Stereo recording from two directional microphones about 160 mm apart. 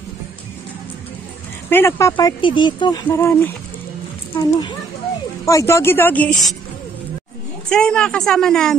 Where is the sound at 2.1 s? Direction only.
30° left (ahead or behind).